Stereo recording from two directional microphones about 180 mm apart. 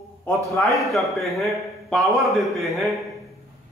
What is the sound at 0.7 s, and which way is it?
A man's voice, centre (ahead or behind).